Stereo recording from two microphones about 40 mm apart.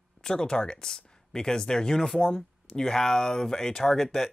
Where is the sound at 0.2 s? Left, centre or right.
Centre.